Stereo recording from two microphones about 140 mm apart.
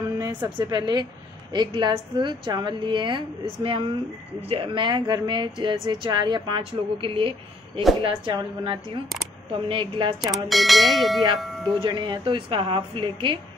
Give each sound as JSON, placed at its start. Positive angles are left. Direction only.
{"t": 0.4, "sound": "speech", "side_deg": -35}
{"t": 10.2, "sound": "speech", "side_deg": 0}
{"t": 11.3, "sound": "tubular bells", "side_deg": 0}
{"t": 11.8, "sound": "speech", "side_deg": -35}